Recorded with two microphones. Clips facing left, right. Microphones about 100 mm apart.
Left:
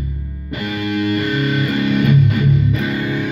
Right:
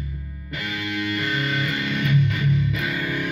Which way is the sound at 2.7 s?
30° left (ahead or behind).